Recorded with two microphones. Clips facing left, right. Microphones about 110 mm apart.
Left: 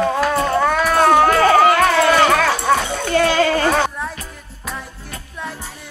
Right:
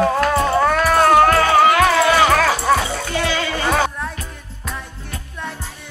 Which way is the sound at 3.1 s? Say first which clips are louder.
Left 8 dB; 50° left (ahead or behind).